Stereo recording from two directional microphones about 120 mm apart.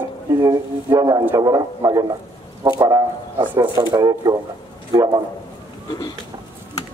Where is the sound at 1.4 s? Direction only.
30° right (ahead or behind).